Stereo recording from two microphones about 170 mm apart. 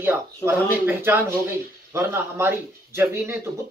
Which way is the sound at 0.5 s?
10° right (ahead or behind).